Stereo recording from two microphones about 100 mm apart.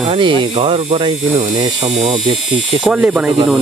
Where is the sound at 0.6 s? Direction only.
80° right.